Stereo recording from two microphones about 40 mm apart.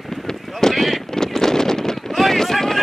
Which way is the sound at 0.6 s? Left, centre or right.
Centre.